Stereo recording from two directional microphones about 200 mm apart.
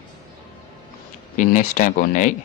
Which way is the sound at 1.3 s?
40° left (ahead or behind).